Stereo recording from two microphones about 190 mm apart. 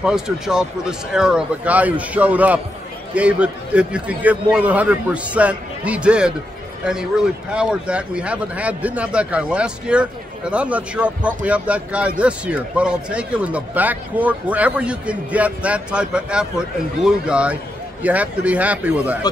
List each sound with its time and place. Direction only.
0.0 s speech: 5° right (ahead or behind)